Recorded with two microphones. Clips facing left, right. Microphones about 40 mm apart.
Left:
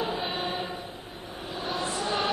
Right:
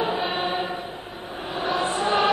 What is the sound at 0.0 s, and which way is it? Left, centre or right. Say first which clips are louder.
Choir: right 5 dB; right.